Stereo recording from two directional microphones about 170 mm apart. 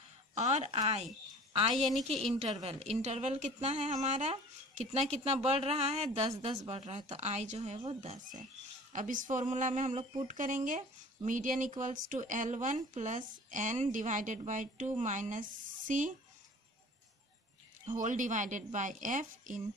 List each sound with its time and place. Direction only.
0.4 s a woman's voice: 40° right (ahead or behind)
1.8 s a woman's voice: centre (ahead or behind)
2.4 s a woman's voice: 35° right (ahead or behind)
8.9 s a woman's voice: 50° right (ahead or behind)
17.8 s a woman's voice: 50° right (ahead or behind)